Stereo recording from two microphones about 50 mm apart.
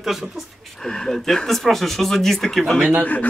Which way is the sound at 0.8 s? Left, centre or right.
Centre.